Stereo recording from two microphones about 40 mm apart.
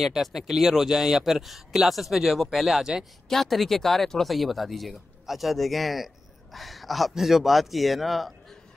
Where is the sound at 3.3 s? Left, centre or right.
Centre.